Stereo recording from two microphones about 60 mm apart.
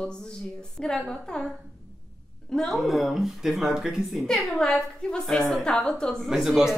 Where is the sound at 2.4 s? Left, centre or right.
Centre.